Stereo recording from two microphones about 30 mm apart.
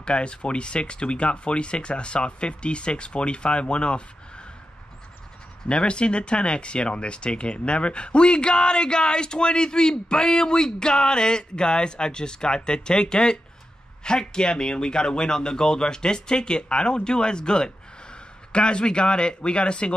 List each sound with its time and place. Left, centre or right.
0.0 s speech: left
5.7 s speech: left